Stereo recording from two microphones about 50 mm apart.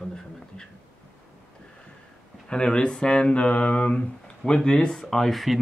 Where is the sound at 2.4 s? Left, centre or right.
Centre.